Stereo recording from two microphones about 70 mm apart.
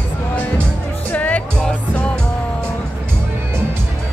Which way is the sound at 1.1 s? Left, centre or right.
Left.